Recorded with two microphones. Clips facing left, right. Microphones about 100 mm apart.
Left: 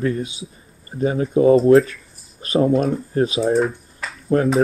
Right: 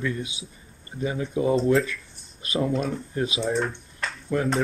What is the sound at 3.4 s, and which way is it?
Typing, 5° left (ahead or behind).